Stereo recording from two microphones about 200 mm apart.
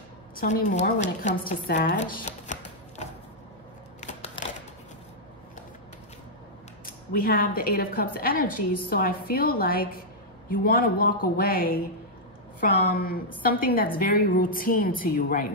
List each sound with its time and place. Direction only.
0.4 s speech: 40° left (ahead or behind)
2.0 s a sound: 35° left (ahead or behind)
7.1 s a woman's voice: 45° left (ahead or behind)